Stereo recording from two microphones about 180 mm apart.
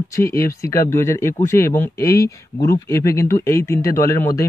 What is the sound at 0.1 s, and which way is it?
Speech, 15° left (ahead or behind).